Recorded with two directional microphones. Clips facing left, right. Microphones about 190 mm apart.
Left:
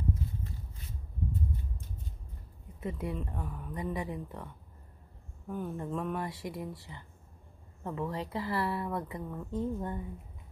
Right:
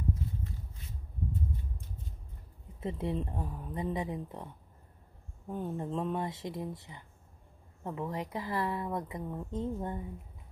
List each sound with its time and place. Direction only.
2.8 s speech: 25° right (ahead or behind)
5.5 s a woman's voice: 25° right (ahead or behind)